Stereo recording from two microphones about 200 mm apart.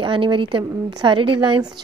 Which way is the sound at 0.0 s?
25° right (ahead or behind).